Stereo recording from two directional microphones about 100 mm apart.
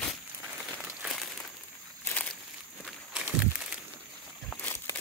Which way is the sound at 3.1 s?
15° right (ahead or behind).